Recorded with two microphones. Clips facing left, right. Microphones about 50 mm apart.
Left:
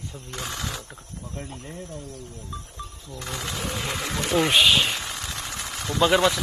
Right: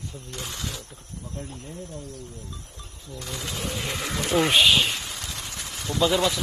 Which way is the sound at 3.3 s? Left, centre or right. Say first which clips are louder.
Left 1 dB; left.